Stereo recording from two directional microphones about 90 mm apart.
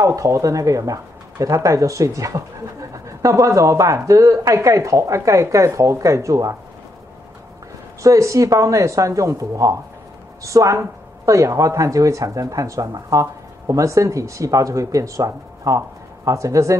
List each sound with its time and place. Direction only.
0.0 s speech: 35° right (ahead or behind)
8.0 s speech: 35° right (ahead or behind)